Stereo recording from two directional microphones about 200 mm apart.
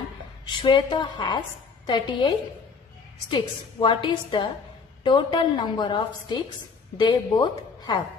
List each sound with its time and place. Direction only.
0.5 s a woman's voice: 20° left (ahead or behind)
3.3 s a woman's voice: 25° left (ahead or behind)